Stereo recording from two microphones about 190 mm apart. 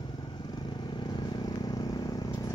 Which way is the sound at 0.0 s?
25° left (ahead or behind).